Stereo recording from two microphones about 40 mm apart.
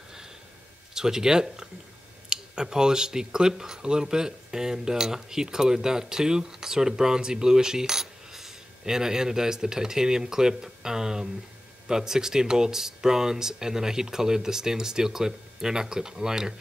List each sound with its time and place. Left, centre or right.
0.9 s speech: centre